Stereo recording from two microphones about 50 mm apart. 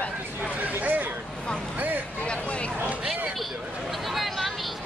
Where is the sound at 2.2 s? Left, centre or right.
Left.